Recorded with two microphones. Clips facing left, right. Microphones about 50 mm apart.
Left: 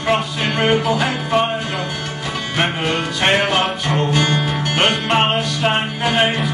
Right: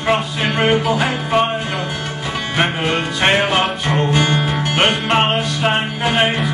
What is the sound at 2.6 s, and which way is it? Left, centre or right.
Music, right.